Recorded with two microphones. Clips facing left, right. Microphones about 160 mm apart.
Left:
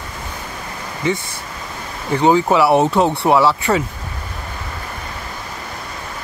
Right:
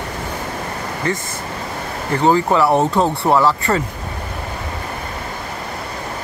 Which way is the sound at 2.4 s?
5° left (ahead or behind).